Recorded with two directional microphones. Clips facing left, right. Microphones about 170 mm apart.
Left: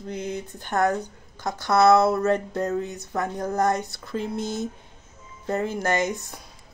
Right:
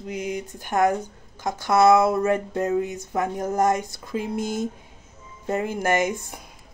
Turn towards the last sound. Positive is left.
turn(degrees=-15)  # may be behind; listen again after turning